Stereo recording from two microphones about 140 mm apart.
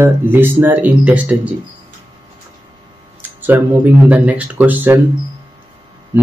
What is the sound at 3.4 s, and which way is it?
Speech, 15° right (ahead or behind).